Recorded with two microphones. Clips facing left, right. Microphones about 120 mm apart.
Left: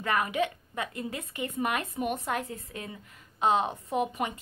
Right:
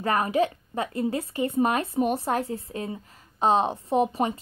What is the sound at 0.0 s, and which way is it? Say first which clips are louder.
A woman's voice: right 5 dB; 35° right (ahead or behind).